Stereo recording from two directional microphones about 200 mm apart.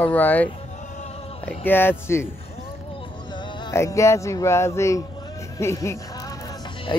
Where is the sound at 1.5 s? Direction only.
10° left (ahead or behind).